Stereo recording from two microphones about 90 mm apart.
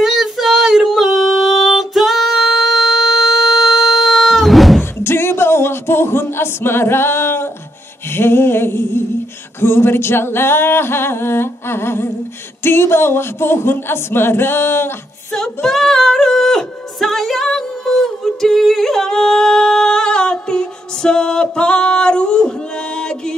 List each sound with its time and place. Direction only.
0.0 s female singing: centre (ahead or behind)
5.0 s a sound: 25° left (ahead or behind)
8.1 s singing: 25° left (ahead or behind)
15.3 s female singing: 5° left (ahead or behind)